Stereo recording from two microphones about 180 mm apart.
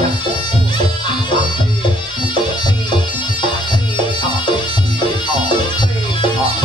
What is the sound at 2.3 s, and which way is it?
Music, 25° left (ahead or behind).